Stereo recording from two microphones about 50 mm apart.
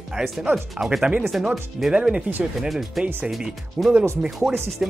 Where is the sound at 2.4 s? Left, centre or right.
Centre.